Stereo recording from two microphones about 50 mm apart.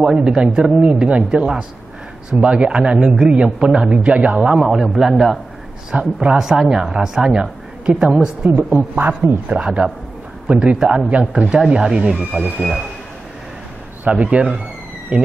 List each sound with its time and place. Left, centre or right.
0.0 s a man's voice: centre
4.6 s speech: centre
5.9 s a man's voice: right
6.3 s a woman's voice: centre
8.5 s a woman's voice: right
10.5 s a man's voice: centre
11.4 s speech: centre
14.0 s a man's voice: right